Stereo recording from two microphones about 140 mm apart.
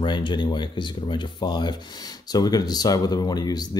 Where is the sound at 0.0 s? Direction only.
35° left (ahead or behind).